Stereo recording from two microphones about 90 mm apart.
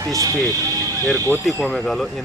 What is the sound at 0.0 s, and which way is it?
Speech, 40° right (ahead or behind).